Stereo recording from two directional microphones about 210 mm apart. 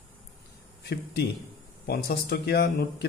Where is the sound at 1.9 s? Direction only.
50° left (ahead or behind).